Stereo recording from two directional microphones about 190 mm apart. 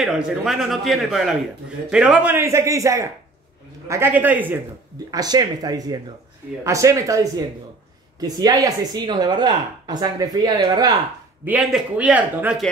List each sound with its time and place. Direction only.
0.0 s a man's voice: centre (ahead or behind)
5.1 s a man's voice: 20° right (ahead or behind)
11.4 s a man's voice: 5° right (ahead or behind)